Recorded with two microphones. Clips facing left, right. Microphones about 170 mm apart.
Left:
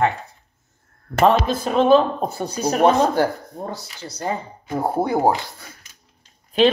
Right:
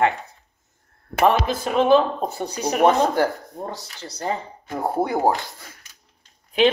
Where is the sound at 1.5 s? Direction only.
20° left (ahead or behind).